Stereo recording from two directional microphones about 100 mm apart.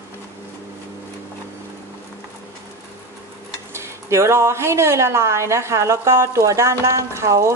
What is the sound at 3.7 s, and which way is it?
Speech, 25° right (ahead or behind).